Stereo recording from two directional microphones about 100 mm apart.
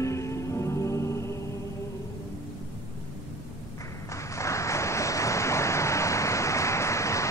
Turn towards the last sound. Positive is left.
turn(degrees=30)  # may be behind; listen again after turning